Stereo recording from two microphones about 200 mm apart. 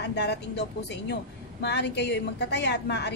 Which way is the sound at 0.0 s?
60° left (ahead or behind).